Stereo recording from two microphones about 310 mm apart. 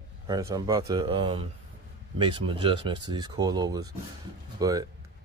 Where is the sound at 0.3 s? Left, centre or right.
Centre.